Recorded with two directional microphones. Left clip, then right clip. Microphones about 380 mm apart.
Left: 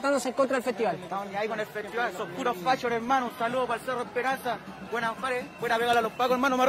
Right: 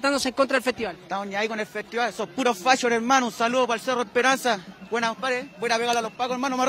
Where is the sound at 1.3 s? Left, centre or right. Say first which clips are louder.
Right 3 dB; right.